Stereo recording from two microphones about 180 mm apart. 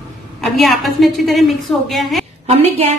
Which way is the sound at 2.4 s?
35° right (ahead or behind).